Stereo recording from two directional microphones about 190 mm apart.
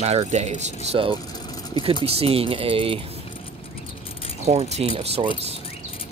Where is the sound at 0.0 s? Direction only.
35° right (ahead or behind).